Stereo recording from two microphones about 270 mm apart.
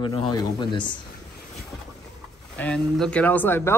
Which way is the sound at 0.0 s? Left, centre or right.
Centre.